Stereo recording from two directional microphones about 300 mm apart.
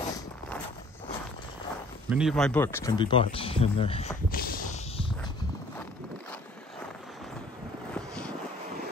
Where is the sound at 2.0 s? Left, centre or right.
Centre.